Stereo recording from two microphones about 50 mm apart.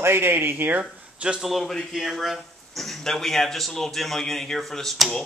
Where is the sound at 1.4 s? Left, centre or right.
Centre.